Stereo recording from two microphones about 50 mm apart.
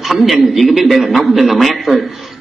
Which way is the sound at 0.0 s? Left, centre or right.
Centre.